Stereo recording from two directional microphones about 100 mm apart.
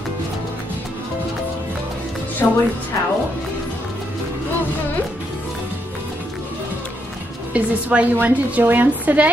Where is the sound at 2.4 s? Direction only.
20° left (ahead or behind).